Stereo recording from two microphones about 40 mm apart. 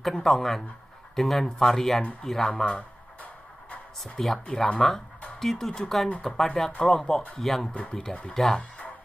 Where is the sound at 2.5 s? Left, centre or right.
Left.